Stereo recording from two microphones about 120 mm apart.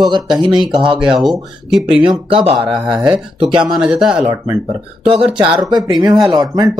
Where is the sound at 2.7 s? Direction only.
40° right (ahead or behind).